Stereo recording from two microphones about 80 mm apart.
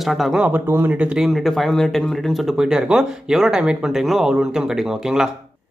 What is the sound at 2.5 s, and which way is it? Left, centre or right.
Speech, centre.